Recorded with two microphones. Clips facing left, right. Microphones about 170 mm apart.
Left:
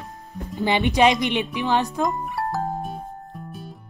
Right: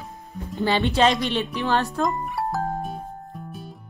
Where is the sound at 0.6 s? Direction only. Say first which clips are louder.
Left 1 dB; 15° left (ahead or behind).